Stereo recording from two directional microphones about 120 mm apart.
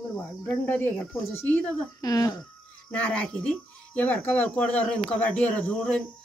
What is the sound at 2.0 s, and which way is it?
Speech, 30° left (ahead or behind).